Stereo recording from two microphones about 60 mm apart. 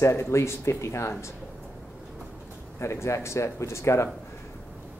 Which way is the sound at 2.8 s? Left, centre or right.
Left.